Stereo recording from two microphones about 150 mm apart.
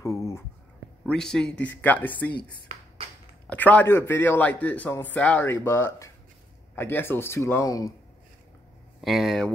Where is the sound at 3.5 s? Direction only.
10° left (ahead or behind).